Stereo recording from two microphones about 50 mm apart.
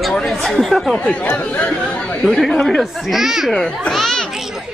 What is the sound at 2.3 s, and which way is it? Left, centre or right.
Speech, centre.